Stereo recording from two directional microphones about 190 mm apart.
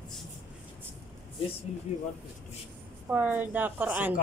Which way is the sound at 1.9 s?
35° left (ahead or behind).